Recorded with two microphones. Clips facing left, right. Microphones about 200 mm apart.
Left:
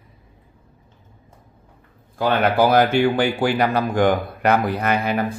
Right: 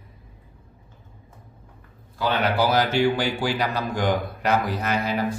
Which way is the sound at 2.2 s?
50° left (ahead or behind).